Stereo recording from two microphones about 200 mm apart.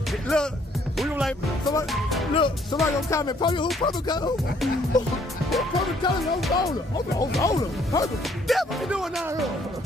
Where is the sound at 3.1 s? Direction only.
15° left (ahead or behind).